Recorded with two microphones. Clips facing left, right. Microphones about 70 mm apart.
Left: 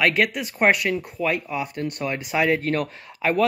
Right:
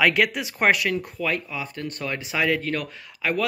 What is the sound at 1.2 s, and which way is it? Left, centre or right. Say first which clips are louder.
Speech: left 3 dB; left.